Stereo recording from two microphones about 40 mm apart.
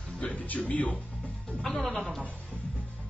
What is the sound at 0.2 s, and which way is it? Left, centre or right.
Speech, left.